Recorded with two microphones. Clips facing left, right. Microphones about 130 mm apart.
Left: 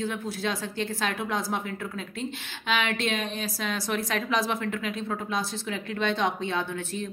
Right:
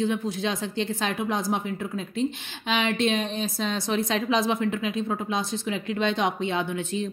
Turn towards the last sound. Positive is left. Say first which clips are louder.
# right 3 dB
turn(degrees=-15)  # may be behind; listen again after turning